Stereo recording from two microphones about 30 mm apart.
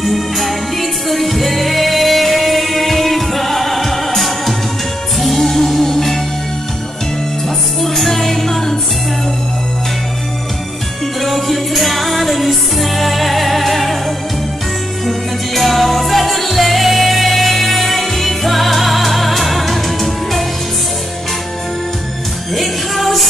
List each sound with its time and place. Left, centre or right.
0.0 s music: centre
5.2 s music: centre
7.4 s music: centre
11.1 s music: centre
15.0 s music: centre
22.5 s music: centre